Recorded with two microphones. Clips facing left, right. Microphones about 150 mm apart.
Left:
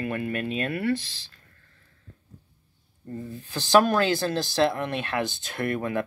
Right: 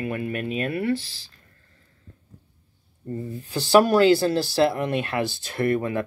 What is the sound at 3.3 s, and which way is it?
Speech, 10° right (ahead or behind).